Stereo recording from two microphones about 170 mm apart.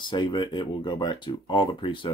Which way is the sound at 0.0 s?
25° left (ahead or behind).